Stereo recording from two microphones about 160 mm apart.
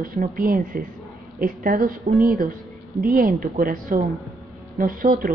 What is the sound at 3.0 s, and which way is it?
A woman's voice, 60° right (ahead or behind).